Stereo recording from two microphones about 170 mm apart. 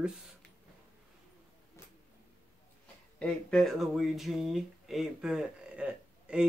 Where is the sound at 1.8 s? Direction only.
15° left (ahead or behind).